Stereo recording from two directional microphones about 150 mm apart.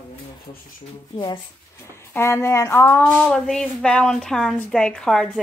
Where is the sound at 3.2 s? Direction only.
5° left (ahead or behind).